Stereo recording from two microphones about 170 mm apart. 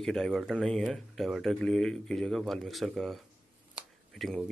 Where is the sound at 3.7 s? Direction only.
Centre (ahead or behind).